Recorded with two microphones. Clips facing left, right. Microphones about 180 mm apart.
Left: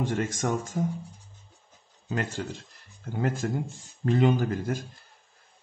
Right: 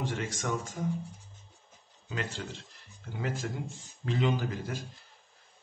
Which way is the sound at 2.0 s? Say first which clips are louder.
Left 6 dB; 45° left (ahead or behind).